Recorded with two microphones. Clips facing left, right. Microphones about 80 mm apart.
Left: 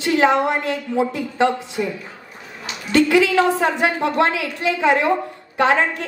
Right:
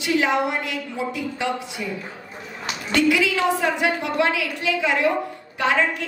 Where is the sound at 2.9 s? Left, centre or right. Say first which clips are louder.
Left 4 dB; left.